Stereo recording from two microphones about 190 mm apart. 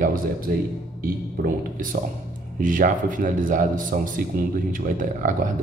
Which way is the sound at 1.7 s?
45° right (ahead or behind).